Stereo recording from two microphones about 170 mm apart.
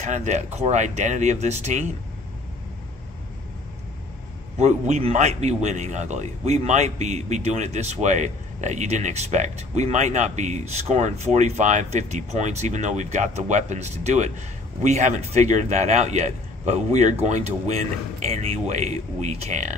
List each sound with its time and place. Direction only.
0.0 s speech: 45° right (ahead or behind)
4.6 s a man's voice: 45° right (ahead or behind)